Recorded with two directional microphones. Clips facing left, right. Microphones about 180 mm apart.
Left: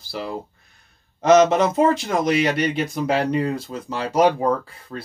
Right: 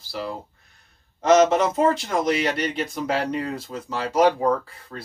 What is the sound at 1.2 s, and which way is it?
Speech, 15° left (ahead or behind).